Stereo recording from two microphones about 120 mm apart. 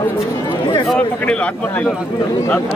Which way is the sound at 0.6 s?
40° left (ahead or behind).